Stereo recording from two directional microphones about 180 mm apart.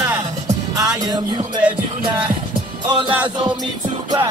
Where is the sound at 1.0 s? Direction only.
20° right (ahead or behind).